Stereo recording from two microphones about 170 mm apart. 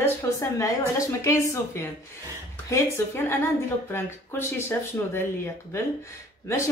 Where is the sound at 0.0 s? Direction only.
15° left (ahead or behind).